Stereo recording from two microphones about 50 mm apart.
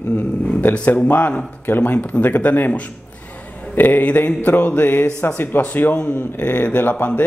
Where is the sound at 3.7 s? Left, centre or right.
Left.